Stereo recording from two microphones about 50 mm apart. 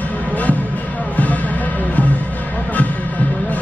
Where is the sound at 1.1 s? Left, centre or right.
Left.